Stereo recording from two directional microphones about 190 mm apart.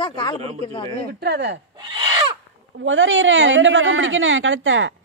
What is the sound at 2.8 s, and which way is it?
A woman's voice, 85° right.